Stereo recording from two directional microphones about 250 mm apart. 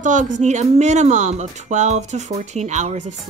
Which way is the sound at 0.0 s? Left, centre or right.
Right.